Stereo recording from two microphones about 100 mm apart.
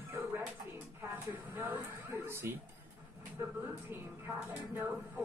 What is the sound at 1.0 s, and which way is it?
Speech, 20° right (ahead or behind).